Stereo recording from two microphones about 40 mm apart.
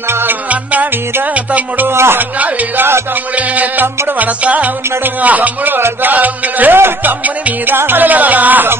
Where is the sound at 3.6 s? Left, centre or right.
Right.